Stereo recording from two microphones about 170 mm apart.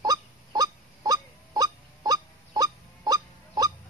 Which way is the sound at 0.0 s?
20° right (ahead or behind).